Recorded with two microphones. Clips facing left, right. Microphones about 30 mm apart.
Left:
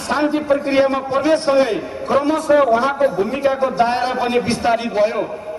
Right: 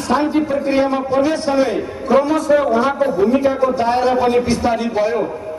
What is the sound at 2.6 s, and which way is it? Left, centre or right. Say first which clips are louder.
Speech: left 1 dB; left.